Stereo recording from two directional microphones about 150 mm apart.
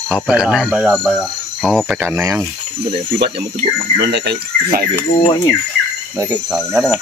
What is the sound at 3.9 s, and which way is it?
Speech, 90° right.